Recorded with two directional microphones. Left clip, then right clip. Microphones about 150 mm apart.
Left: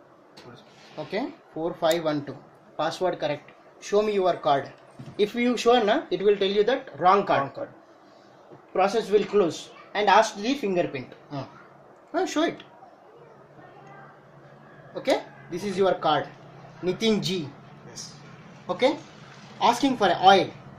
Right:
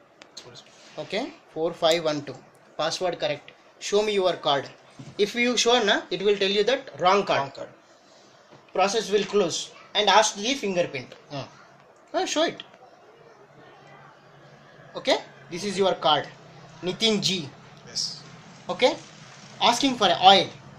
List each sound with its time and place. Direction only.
0.9 s speech: 15° right (ahead or behind)
8.7 s speech: centre (ahead or behind)
15.0 s a man's voice: 20° right (ahead or behind)
18.7 s a man's voice: 20° right (ahead or behind)